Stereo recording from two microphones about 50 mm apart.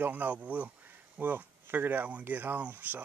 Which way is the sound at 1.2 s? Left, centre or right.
Right.